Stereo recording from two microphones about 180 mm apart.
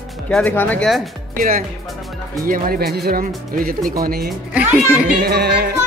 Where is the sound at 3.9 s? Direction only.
55° right (ahead or behind).